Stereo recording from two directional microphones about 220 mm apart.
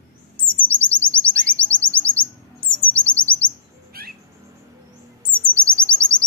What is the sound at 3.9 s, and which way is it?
Bird, 45° right (ahead or behind).